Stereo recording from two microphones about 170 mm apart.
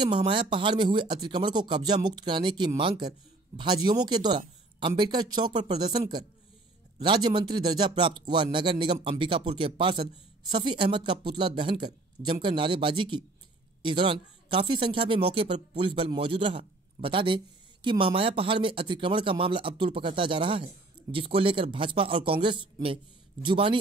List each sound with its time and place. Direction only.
0.0 s speech: 30° right (ahead or behind)